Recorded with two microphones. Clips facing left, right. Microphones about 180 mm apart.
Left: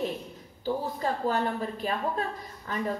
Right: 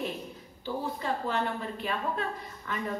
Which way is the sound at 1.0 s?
40° left (ahead or behind).